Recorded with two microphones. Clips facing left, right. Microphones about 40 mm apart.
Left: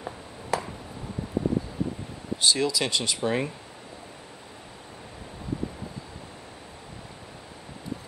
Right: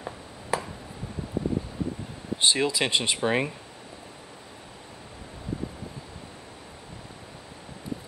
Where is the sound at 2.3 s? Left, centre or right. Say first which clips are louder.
Even; right.